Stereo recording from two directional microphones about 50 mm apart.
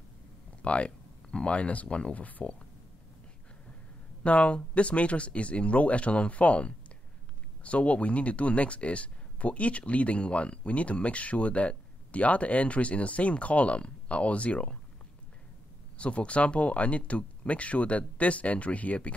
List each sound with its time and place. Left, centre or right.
0.6 s speech: left
4.2 s speech: left
16.0 s speech: left